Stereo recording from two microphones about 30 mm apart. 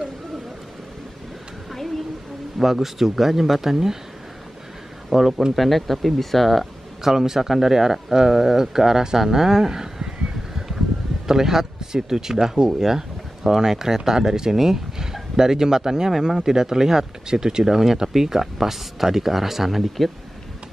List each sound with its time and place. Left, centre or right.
1.7 s a sound: centre
2.6 s speech: centre
5.1 s speech: centre
7.0 s speech: centre
11.2 s a man's voice: centre